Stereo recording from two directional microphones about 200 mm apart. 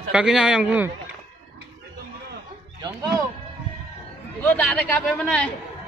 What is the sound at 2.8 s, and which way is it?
Speech, 20° right (ahead or behind).